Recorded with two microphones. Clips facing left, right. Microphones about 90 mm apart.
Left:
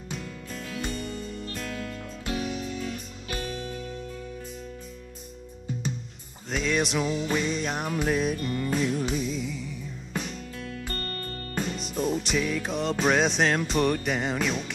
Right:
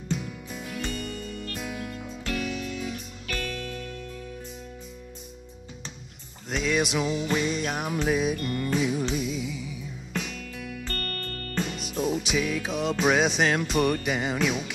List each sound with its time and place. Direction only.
0.2 s music: 10° right (ahead or behind)
0.9 s music: centre (ahead or behind)
1.5 s music: 10° right (ahead or behind)
2.5 s music: centre (ahead or behind)
3.3 s music: 25° left (ahead or behind)
6.5 s music: centre (ahead or behind)
11.0 s music: 20° left (ahead or behind)
11.6 s music: 5° right (ahead or behind)